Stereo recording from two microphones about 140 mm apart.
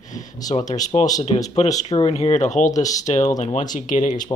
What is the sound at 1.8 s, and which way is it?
Speech, 45° left (ahead or behind).